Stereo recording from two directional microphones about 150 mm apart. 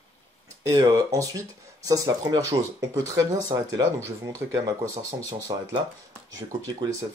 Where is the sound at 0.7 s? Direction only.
25° right (ahead or behind).